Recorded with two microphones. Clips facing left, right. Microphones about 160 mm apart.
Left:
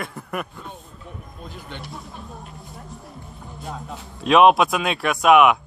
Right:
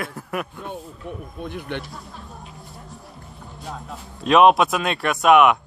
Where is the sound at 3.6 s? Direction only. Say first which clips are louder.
Left 1 dB; centre (ahead or behind).